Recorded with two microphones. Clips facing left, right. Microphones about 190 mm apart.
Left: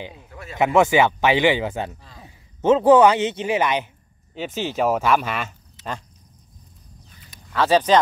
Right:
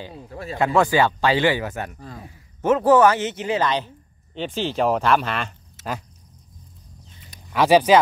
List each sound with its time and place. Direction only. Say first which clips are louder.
0.1 s speech: right 6 dB; 35° right (ahead or behind)
0.6 s speech: left 2 dB; 20° left (ahead or behind)
2.0 s speech: right 9 dB; 50° right (ahead or behind)
2.2 s speech: left 3 dB; 20° left (ahead or behind)
7.5 s speech: right 2 dB; 10° right (ahead or behind)